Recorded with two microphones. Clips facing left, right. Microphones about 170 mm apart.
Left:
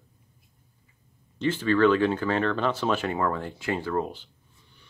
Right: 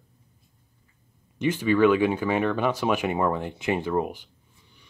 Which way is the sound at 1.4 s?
15° right (ahead or behind).